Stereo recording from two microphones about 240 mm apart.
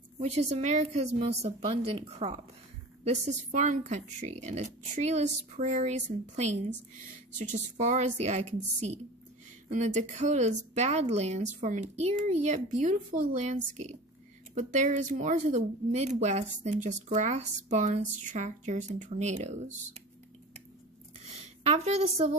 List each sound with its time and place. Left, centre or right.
0.2 s speech: right
9.7 s speech: right
14.5 s speech: right
21.6 s speech: right